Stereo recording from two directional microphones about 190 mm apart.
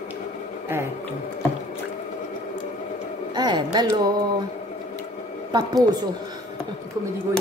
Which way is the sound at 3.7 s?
20° right (ahead or behind).